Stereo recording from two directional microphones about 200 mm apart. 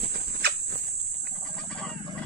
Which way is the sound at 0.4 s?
50° right (ahead or behind).